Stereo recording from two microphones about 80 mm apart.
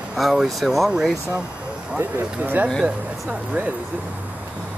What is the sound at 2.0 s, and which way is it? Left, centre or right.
Speech, right.